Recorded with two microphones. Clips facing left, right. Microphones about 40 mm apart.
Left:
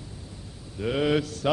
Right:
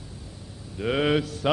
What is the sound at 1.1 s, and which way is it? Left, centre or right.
Mantra, centre.